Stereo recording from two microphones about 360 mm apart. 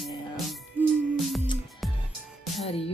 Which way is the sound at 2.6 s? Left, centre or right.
Centre.